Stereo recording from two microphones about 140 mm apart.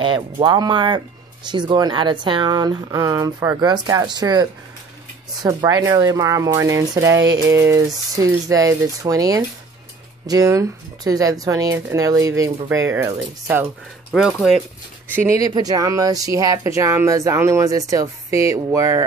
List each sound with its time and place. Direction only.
0.0 s speech: 35° right (ahead or behind); by 13.7 s 15° right (ahead or behind)
14.1 s speech: 5° right (ahead or behind)
15.1 s speech: 25° right (ahead or behind)